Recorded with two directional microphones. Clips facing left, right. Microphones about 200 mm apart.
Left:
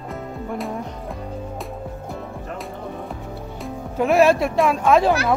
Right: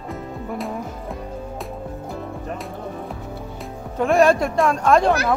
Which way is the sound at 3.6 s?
5° left (ahead or behind).